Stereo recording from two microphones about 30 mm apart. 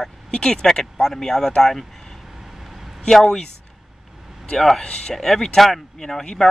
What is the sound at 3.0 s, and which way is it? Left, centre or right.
Speech, centre.